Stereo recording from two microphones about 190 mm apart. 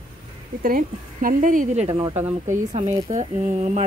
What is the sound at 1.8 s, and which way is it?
Speech, 25° right (ahead or behind).